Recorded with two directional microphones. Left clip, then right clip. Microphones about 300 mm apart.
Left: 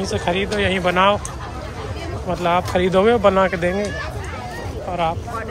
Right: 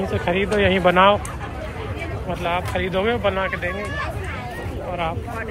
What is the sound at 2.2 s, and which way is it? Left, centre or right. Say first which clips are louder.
Speech: left 5 dB; centre.